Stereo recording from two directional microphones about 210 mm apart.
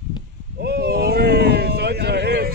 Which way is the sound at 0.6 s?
50° right (ahead or behind).